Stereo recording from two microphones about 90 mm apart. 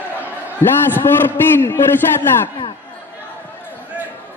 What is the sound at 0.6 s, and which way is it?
A man's voice, 25° left (ahead or behind).